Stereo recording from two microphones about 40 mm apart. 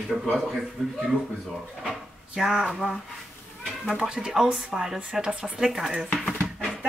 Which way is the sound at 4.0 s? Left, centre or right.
Right.